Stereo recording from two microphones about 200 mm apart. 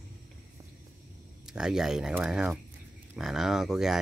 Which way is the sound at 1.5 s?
5° right (ahead or behind).